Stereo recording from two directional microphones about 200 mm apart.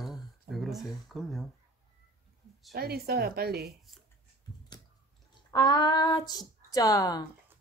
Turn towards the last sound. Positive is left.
turn(degrees=15)  # may be behind; listen again after turning